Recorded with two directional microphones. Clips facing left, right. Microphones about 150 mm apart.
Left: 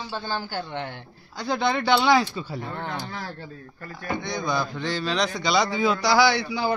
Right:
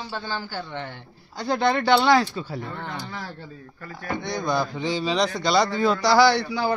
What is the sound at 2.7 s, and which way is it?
Speech, 50° left (ahead or behind).